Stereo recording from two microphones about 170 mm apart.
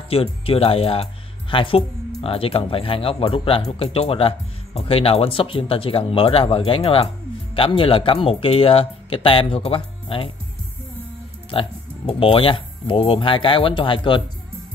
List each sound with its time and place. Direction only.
0.1 s speech: 35° left (ahead or behind)
11.5 s speech: 35° left (ahead or behind)